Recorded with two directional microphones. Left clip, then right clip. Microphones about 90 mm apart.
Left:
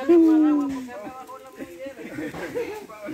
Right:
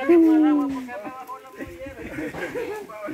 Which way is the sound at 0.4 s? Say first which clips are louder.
Right 1 dB; 35° left (ahead or behind).